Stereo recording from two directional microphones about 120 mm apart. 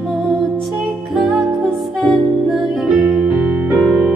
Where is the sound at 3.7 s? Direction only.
5° right (ahead or behind).